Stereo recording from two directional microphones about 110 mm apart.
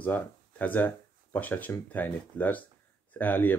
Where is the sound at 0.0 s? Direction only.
15° left (ahead or behind).